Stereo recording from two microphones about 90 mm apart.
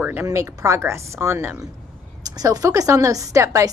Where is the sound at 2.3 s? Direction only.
45° right (ahead or behind).